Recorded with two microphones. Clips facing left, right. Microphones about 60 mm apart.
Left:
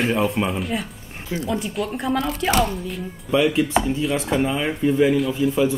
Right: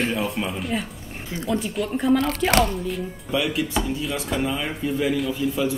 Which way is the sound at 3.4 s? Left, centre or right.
Left.